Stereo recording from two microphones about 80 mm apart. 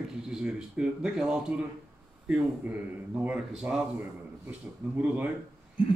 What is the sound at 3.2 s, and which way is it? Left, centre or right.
Speech, centre.